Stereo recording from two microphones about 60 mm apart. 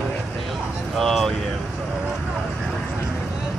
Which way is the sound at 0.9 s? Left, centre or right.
Centre.